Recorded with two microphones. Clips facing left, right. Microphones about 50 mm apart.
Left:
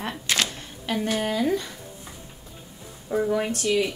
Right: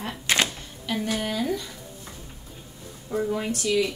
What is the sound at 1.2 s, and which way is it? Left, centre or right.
Speech, left.